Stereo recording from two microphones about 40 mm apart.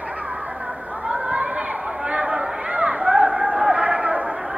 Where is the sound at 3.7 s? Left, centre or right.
Right.